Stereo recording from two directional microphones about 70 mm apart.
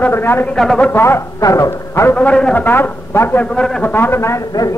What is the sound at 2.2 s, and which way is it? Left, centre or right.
Speech, centre.